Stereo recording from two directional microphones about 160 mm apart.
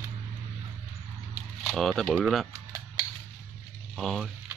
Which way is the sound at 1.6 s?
Centre (ahead or behind).